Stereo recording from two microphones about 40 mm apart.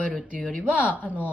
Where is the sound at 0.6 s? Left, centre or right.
Right.